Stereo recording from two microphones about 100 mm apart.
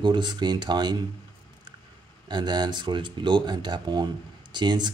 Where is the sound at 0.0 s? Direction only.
50° right (ahead or behind).